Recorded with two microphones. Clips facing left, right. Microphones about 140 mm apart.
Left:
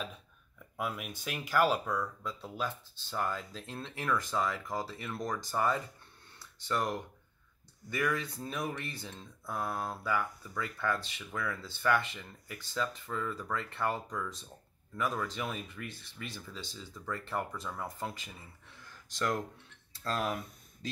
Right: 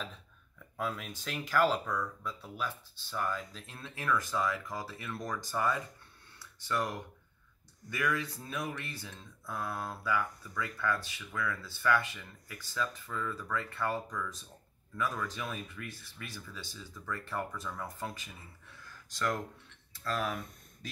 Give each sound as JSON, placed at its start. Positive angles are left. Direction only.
{"t": 0.7, "sound": "speech", "side_deg": 10}
{"t": 2.2, "sound": "speech", "side_deg": 25}
{"t": 18.9, "sound": "a sound", "side_deg": 25}
{"t": 20.0, "sound": "speech", "side_deg": 30}